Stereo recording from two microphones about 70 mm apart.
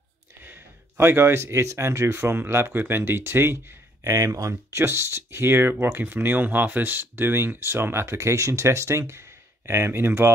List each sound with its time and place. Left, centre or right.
0.4 s speech: right
4.0 s speech: right